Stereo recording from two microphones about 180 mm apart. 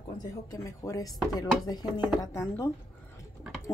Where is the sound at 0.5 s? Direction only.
20° left (ahead or behind).